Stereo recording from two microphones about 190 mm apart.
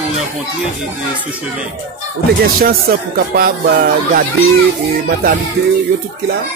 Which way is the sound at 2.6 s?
50° right (ahead or behind).